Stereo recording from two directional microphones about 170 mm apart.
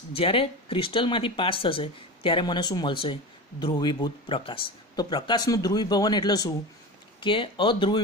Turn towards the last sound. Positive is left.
turn(degrees=25)  # may be behind; listen again after turning